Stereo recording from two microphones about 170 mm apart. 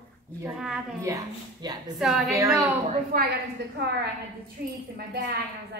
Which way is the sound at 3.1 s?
70° right (ahead or behind).